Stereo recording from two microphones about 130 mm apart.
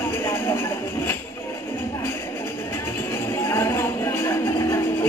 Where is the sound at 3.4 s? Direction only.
20° left (ahead or behind).